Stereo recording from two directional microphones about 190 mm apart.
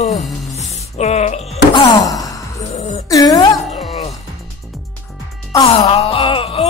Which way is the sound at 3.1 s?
20° left (ahead or behind).